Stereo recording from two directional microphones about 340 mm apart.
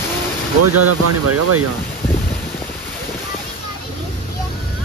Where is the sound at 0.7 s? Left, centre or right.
Right.